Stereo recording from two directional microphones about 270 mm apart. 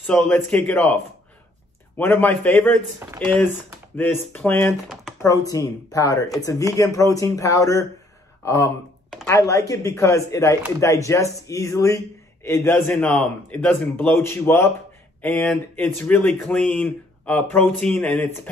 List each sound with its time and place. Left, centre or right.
0.0 s speech: centre
2.0 s a man's voice: centre